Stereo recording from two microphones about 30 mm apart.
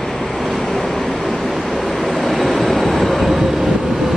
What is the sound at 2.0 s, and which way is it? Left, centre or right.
Vehicle, centre.